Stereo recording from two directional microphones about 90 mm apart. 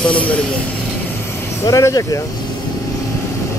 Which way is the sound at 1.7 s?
35° left (ahead or behind).